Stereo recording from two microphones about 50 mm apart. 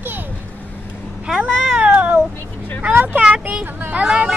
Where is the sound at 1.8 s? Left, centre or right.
Right.